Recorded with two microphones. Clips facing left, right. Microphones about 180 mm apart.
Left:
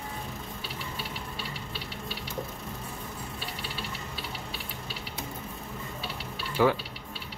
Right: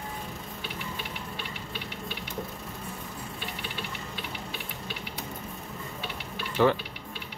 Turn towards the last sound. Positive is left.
turn(degrees=5)  # may be behind; listen again after turning